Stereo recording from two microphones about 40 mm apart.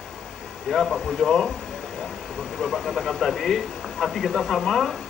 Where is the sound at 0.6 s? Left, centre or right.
Centre.